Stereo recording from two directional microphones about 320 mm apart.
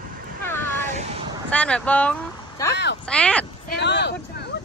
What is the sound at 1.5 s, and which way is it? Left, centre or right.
Speech, centre.